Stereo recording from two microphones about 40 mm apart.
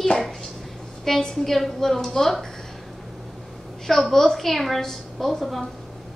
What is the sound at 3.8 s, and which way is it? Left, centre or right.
A woman's voice, centre.